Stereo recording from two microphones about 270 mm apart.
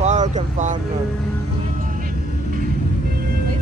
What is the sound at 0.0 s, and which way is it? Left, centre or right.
Vehicle, right.